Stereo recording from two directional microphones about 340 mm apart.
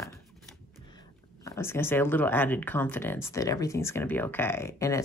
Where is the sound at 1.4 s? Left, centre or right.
Centre.